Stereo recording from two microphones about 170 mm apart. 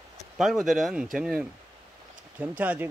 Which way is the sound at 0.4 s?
Centre (ahead or behind).